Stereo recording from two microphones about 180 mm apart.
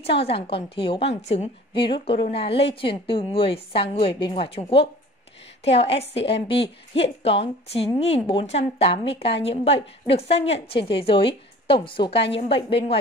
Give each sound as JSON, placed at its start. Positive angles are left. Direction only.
{"t": 0.2, "sound": "a woman's voice", "side_deg": 30}